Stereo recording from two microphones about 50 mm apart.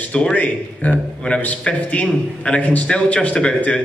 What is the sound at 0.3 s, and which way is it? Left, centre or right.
Speech, left.